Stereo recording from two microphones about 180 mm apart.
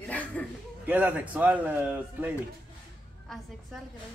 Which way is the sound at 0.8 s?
10° right (ahead or behind).